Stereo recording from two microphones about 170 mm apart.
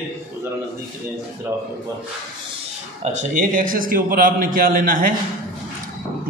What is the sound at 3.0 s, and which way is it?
A man's voice, 50° right (ahead or behind).